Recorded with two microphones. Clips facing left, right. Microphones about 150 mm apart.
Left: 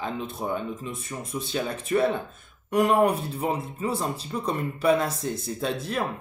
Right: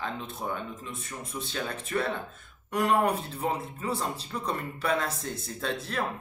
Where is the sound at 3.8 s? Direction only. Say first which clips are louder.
Left 4 dB; 15° left (ahead or behind).